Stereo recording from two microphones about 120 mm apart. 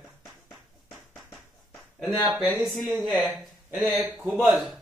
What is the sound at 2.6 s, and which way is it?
A man's voice, centre (ahead or behind).